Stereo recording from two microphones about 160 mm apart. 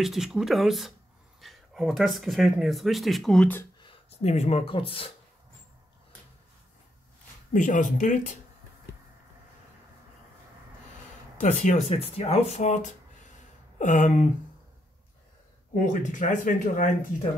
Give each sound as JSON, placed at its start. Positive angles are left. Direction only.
{"t": 0.0, "sound": "speech", "side_deg": 0}
{"t": 3.8, "sound": "speech", "side_deg": 40}
{"t": 7.5, "sound": "speech", "side_deg": 55}
{"t": 11.3, "sound": "speech", "side_deg": 50}
{"t": 11.9, "sound": "speech", "side_deg": 40}
{"t": 15.7, "sound": "speech", "side_deg": 55}